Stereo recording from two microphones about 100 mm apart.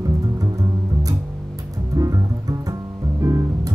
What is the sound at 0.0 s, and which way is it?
Music, 35° right (ahead or behind).